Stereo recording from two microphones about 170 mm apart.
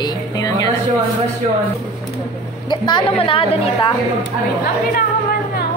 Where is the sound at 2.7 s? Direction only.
25° left (ahead or behind).